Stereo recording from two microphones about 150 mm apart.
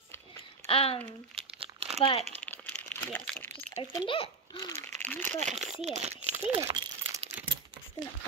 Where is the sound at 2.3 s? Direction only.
10° left (ahead or behind).